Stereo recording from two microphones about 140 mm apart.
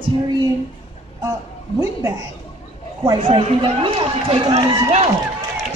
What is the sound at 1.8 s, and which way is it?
Speech, 25° right (ahead or behind).